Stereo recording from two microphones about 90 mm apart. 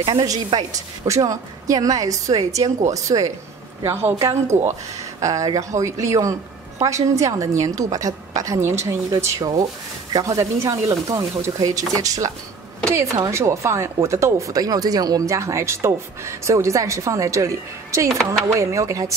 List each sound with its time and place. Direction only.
1.0 s speech: 35° right (ahead or behind)
9.4 s speech: 50° right (ahead or behind)
10.2 s speech: 35° right (ahead or behind)